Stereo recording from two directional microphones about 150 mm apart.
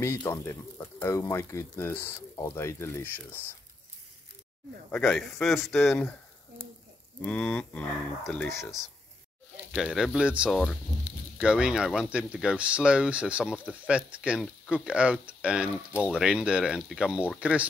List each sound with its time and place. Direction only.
0.3 s speech: 15° left (ahead or behind)
4.9 s speech: 5° left (ahead or behind)
7.2 s frying: 10° left (ahead or behind)
9.8 s speech: 5° right (ahead or behind)